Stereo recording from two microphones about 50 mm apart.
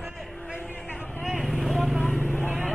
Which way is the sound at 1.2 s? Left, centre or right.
Centre.